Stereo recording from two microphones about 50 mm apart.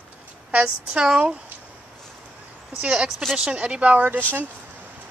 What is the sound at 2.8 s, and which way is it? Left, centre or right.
A woman's voice, centre.